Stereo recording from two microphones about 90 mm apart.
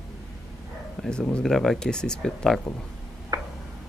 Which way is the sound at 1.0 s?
10° left (ahead or behind).